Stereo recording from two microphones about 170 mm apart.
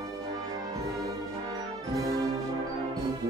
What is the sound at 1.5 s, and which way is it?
Music, 20° right (ahead or behind).